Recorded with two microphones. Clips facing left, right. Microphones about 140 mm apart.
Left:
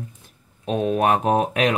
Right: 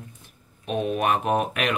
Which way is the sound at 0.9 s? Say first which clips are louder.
Left 4 dB; 35° left (ahead or behind).